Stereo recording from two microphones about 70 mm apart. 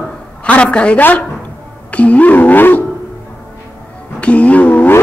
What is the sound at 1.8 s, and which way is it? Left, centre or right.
Wild animals, left.